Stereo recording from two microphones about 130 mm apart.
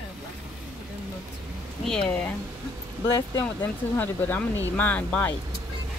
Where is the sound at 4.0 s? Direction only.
15° left (ahead or behind).